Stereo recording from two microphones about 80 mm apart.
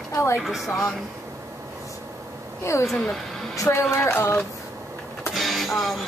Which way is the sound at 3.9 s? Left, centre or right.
Left.